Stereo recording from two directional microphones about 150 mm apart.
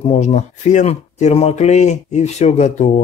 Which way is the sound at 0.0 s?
45° left (ahead or behind).